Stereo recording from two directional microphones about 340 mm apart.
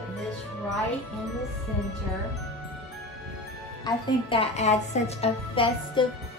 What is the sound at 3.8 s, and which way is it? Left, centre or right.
A woman's voice, centre.